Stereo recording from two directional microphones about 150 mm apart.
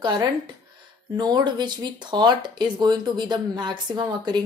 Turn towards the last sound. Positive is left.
turn(degrees=-30)  # may be behind; listen again after turning